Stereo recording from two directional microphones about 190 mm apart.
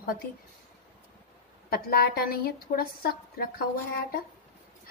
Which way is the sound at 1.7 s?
55° left (ahead or behind).